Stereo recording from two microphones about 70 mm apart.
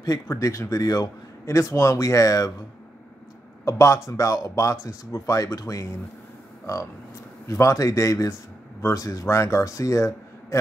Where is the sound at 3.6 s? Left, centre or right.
Left.